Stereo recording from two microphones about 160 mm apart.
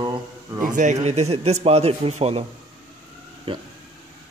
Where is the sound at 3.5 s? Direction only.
35° right (ahead or behind).